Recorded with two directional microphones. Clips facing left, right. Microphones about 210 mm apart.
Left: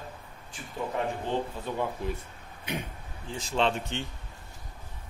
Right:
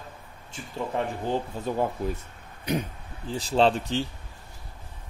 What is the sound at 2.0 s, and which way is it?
Speech, 40° right (ahead or behind).